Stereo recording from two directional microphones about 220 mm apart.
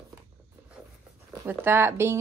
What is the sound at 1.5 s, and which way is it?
Speech, 10° right (ahead or behind).